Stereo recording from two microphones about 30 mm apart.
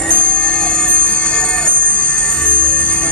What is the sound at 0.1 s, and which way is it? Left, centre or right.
Music, left.